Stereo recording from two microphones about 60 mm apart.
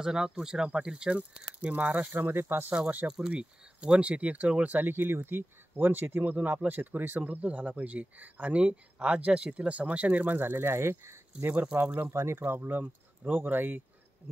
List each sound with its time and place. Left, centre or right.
0.0 s speech: centre
1.6 s speech: right
3.1 s speech: centre
4.7 s speech: right
11.7 s speech: right
12.1 s speech: right